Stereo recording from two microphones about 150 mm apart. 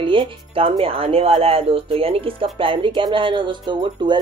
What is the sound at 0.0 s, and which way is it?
Speech, 35° right (ahead or behind).